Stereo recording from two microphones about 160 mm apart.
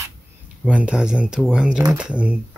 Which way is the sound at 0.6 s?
10° right (ahead or behind).